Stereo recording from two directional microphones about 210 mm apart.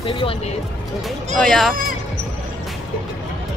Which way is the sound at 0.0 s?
25° left (ahead or behind).